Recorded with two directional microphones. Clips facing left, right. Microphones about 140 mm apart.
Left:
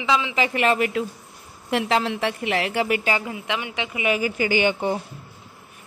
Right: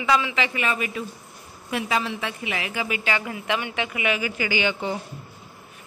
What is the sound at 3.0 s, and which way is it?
Speech, 40° left (ahead or behind).